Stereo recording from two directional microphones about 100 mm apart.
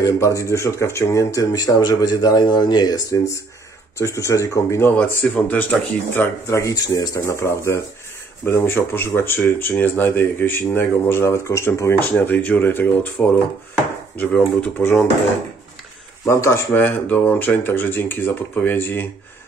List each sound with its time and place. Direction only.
0.0 s speech: 30° left (ahead or behind)
5.2 s speech: 15° left (ahead or behind)
6.4 s speech: 30° left (ahead or behind)
14.8 s speech: 25° left (ahead or behind)
16.3 s speech: 25° left (ahead or behind)